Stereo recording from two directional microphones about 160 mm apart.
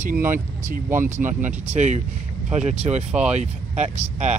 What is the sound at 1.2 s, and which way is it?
Speech, 50° right (ahead or behind).